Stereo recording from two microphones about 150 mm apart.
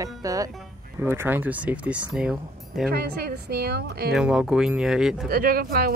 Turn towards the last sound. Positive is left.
turn(degrees=-85)